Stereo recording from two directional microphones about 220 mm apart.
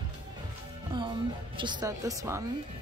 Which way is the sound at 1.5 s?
20° right (ahead or behind).